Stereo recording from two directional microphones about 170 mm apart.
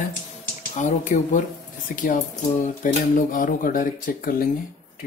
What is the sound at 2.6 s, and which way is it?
Speech, 50° left (ahead or behind).